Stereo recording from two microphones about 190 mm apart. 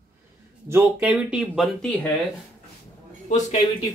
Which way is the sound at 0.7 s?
15° right (ahead or behind).